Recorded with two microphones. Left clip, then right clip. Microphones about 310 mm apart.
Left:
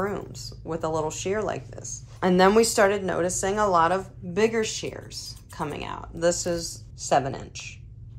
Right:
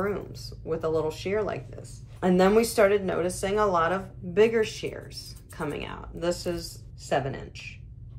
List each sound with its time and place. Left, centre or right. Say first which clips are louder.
0.0 s speech: left 1 dB; centre